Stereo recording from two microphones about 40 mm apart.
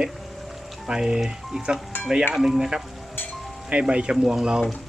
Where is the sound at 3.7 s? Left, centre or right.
Right.